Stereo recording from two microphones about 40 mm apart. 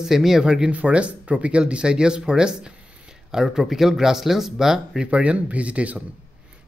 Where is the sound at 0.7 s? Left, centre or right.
Right; by 5.0 s centre.